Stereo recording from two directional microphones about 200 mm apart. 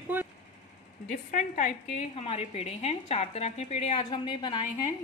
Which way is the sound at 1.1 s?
40° left (ahead or behind).